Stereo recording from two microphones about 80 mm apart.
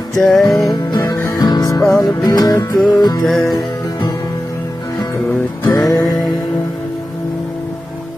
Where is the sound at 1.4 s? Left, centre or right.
Left.